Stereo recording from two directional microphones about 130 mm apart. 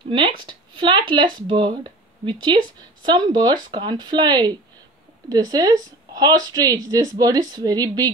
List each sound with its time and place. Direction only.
0.1 s a woman's voice: 40° right (ahead or behind)